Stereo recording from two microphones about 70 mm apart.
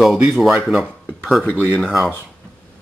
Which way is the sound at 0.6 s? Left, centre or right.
Centre.